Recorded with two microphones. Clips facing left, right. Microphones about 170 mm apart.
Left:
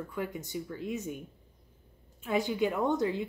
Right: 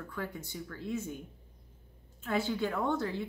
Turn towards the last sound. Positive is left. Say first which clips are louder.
# left 3 dB
turn(degrees=15)  # may be behind; listen again after turning